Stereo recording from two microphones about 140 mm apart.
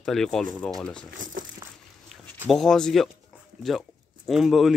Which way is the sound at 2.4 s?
5° left (ahead or behind).